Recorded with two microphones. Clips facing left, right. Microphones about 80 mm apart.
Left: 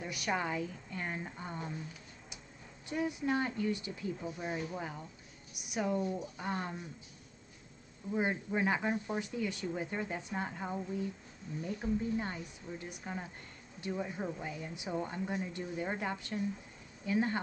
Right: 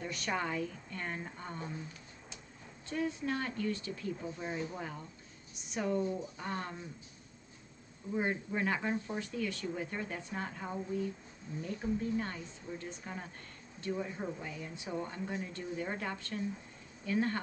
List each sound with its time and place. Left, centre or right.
0.0 s speech: centre
2.9 s speech: centre
8.1 s speech: centre